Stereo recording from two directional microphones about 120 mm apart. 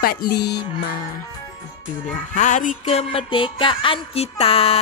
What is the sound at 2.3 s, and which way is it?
Music, 90° left.